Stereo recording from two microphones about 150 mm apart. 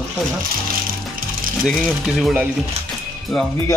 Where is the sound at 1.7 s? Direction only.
Centre (ahead or behind).